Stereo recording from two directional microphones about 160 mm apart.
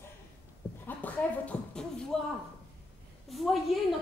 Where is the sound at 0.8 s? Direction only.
10° left (ahead or behind).